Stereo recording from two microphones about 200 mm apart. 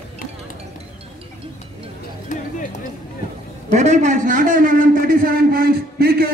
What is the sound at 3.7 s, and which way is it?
A man's voice, 35° right (ahead or behind).